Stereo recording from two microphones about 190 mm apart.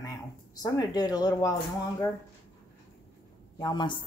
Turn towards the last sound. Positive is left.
turn(degrees=25)  # may be behind; listen again after turning